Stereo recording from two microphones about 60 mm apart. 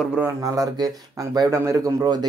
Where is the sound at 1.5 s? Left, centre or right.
Right.